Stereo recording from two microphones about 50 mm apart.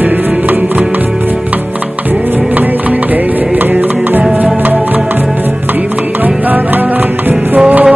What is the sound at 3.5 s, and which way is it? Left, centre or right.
Music, right.